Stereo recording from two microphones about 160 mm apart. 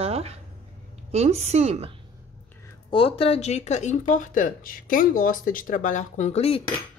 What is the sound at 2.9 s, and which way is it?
Speech, 35° left (ahead or behind).